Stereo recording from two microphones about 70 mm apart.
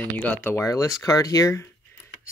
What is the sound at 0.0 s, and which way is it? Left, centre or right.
Speech, left.